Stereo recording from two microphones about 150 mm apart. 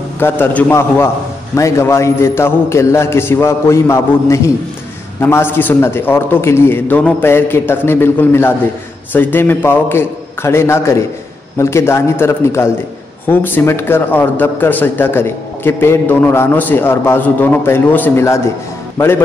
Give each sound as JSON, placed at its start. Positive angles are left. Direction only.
{"t": 0.2, "sound": "speech", "side_deg": 10}